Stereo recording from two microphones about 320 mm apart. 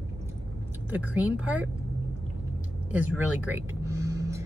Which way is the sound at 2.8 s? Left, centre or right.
Centre.